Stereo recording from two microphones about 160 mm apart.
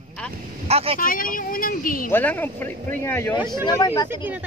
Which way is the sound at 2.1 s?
10° left (ahead or behind).